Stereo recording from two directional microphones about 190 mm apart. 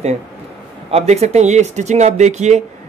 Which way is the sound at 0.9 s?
35° right (ahead or behind).